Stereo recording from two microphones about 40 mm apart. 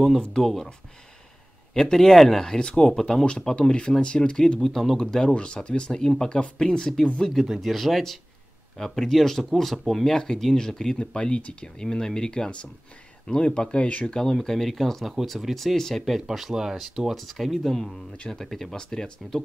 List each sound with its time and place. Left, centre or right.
0.4 s speech: centre
1.7 s speech: centre
3.3 s speech: left
4.6 s speech: centre
5.3 s speech: left
7.2 s speech: centre
11.0 s speech: left
14.3 s speech: centre
16.3 s speech: centre
18.8 s speech: centre